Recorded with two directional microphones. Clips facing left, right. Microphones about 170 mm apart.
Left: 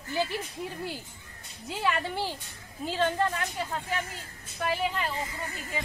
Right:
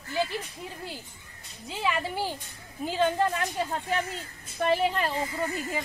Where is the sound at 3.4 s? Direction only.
30° right (ahead or behind).